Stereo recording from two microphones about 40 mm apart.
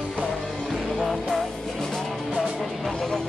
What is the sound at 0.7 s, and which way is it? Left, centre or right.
Music, centre.